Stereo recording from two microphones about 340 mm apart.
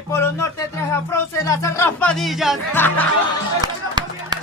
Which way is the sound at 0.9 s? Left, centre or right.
Centre.